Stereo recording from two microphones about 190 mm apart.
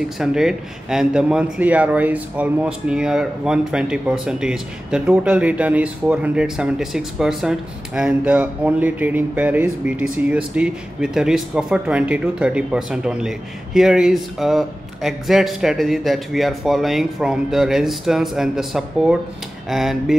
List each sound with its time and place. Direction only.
0.2 s speech: centre (ahead or behind)